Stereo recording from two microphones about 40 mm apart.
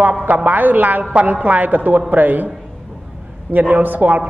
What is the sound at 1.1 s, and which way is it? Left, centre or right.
A woman's voice, right.